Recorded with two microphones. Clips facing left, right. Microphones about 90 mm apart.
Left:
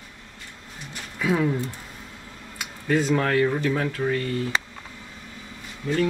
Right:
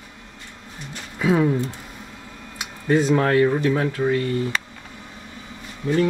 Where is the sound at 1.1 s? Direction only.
20° right (ahead or behind).